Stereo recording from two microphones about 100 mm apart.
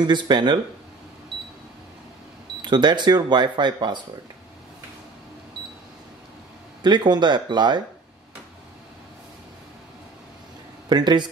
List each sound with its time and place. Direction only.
0.0 s speech: 50° right (ahead or behind)
2.6 s speech: 50° right (ahead or behind)
6.8 s speech: 50° right (ahead or behind)
10.9 s speech: 45° right (ahead or behind)